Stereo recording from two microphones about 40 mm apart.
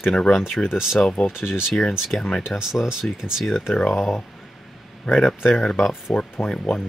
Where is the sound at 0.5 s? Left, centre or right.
Left.